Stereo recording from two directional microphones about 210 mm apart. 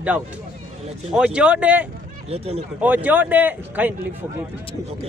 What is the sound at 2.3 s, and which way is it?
Speech, 30° right (ahead or behind).